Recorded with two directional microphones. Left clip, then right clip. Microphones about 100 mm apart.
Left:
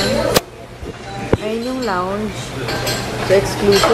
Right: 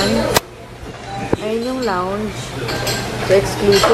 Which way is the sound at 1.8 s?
20° left (ahead or behind).